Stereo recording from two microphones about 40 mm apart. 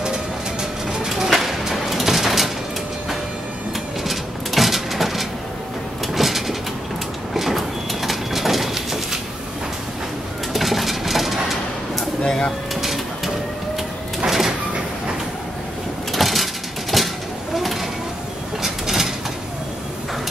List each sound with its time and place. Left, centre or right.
0.6 s bird: centre
1.3 s a sound: centre
4.0 s a sound: centre
6.1 s train: centre
7.3 s vehicle: centre
10.5 s bird: centre
12.2 s bird: centre
12.8 s printer: centre
14.2 s sliding door: centre
16.1 s a sound: centre
18.6 s pulleys: centre